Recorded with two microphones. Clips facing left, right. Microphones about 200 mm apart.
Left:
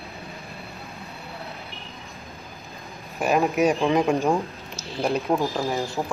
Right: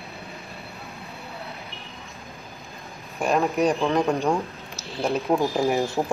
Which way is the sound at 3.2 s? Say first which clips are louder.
Left 1 dB; 5° left (ahead or behind).